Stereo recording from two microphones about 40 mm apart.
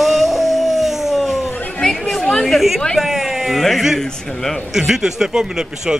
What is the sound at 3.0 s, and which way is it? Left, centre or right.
Speech, centre.